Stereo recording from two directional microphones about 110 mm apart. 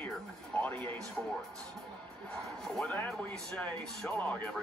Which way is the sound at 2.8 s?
15° left (ahead or behind).